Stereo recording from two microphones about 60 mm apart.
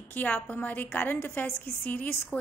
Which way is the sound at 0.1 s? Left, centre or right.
Left.